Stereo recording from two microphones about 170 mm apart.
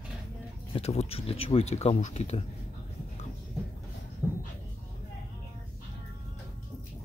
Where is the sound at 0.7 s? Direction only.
35° left (ahead or behind).